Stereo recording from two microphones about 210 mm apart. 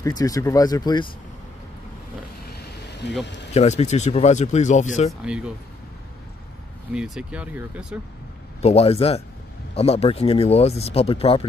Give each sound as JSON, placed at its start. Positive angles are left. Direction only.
{"t": 0.0, "sound": "speech", "side_deg": 15}
{"t": 3.5, "sound": "speech", "side_deg": 35}
{"t": 6.9, "sound": "speech", "side_deg": -5}
{"t": 8.6, "sound": "speech", "side_deg": 30}